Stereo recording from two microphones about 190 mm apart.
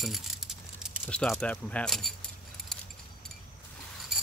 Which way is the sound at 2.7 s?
Centre (ahead or behind).